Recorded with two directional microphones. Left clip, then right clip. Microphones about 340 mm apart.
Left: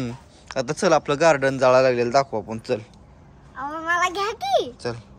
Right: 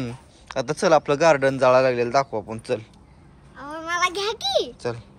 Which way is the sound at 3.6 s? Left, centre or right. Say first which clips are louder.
Left 2 dB; centre.